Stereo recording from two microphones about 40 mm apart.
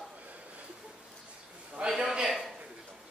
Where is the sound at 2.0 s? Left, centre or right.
Centre.